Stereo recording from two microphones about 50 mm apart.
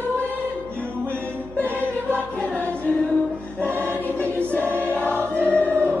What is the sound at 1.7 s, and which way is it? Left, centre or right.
Choir, right.